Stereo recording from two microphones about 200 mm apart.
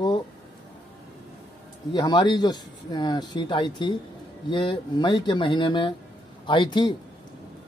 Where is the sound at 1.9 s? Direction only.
20° left (ahead or behind).